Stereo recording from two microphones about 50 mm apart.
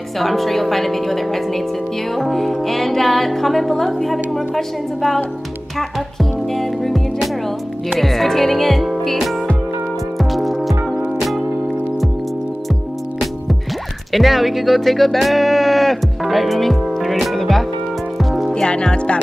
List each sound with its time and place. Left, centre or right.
0.2 s music: centre
6.5 s music: centre
14.1 s music: centre
18.1 s music: centre
18.5 s speech: centre